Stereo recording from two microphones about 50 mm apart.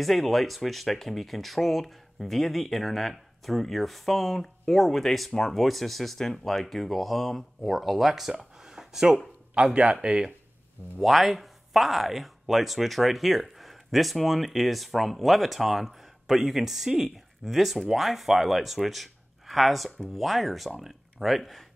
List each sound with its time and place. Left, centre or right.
0.0 s speech: centre
8.6 s a sound: centre
10.0 s speech: centre
11.0 s speech: centre